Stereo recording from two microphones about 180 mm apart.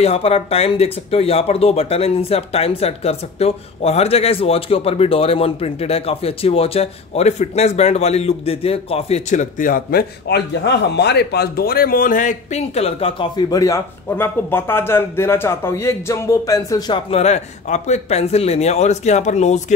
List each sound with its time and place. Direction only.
0.0 s speech: 35° left (ahead or behind)
13.5 s a man's voice: 15° left (ahead or behind); by 19.6 s 40° left (ahead or behind)